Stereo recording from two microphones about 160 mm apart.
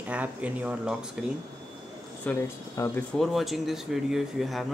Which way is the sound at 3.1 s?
Centre (ahead or behind).